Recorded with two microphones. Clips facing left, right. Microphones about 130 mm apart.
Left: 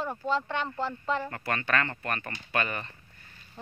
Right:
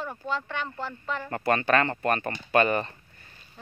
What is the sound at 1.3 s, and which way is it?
Speech, 35° right (ahead or behind).